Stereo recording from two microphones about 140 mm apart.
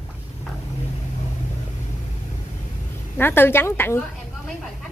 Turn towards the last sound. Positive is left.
turn(degrees=15)  # may be behind; listen again after turning